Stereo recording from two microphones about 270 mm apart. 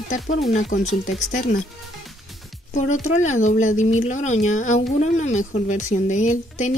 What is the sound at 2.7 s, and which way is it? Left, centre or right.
Speech, left.